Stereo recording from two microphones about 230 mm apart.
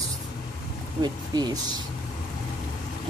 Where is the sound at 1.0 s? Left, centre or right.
Centre.